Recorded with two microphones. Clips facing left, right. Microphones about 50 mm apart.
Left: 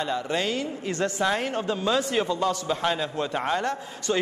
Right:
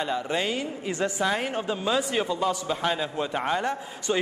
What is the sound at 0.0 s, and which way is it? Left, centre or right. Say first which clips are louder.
A man's voice: even; centre.